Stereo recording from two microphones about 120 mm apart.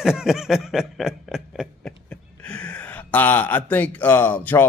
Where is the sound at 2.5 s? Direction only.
10° left (ahead or behind).